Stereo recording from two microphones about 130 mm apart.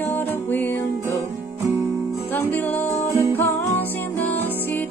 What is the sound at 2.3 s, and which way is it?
Music, 15° left (ahead or behind).